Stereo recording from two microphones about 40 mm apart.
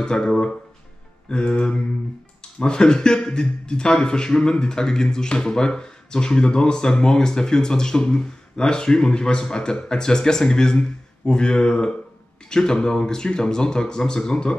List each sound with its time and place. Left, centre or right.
0.0 s speech: centre